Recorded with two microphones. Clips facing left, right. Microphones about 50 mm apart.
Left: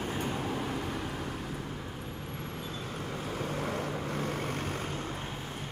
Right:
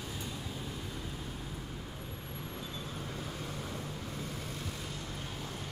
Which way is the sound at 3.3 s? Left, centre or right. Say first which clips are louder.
Left 7 dB; left.